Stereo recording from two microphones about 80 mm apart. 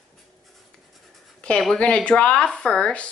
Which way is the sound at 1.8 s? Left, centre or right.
Centre.